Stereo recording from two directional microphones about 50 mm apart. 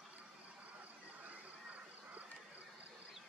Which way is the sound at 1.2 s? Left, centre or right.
Right.